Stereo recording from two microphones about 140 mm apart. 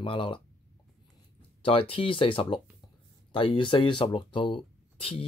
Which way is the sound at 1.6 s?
40° left (ahead or behind).